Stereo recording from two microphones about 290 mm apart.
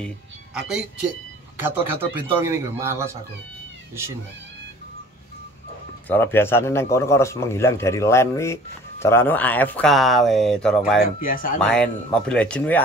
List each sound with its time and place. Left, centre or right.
1.6 s a man's voice: centre
6.0 s a man's voice: centre
11.2 s speech: left
11.6 s speech: centre